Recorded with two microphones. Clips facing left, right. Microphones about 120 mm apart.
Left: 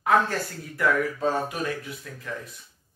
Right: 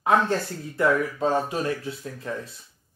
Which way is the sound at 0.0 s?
25° right (ahead or behind).